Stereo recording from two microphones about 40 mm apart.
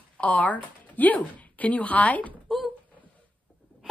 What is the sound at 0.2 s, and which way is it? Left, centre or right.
Speech, left.